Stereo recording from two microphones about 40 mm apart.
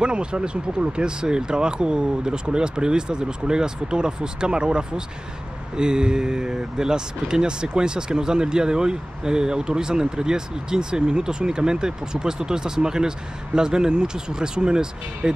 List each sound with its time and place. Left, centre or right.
0.0 s speech: right